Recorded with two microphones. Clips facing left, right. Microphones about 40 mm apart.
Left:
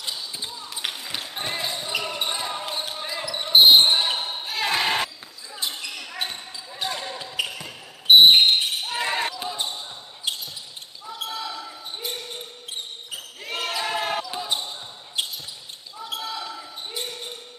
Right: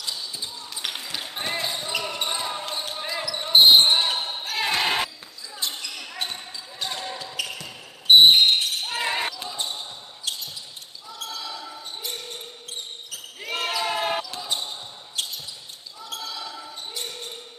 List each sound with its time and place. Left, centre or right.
0.0 s basketball bounce: left; by 1.7 s centre
1.8 s a sound: centre
3.0 s a sound: centre
3.4 s basketball bounce: centre
5.6 s basketball bounce: centre
8.3 s a sound: left
8.8 s basketball bounce: centre
9.3 s basketball bounce: centre
11.4 s basketball bounce: centre
13.4 s basketball bounce: centre
14.2 s basketball bounce: centre
16.0 s basketball bounce: left
16.3 s basketball bounce: centre